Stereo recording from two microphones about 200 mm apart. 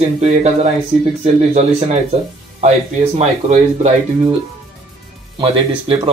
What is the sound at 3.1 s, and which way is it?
Speech, 35° right (ahead or behind).